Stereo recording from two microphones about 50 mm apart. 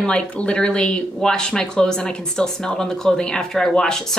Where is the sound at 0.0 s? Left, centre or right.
Left.